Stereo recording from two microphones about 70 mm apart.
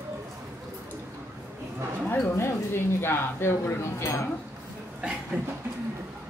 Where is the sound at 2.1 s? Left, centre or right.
Left.